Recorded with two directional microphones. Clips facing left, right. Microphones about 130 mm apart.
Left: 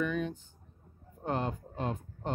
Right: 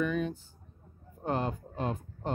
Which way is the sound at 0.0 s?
10° right (ahead or behind).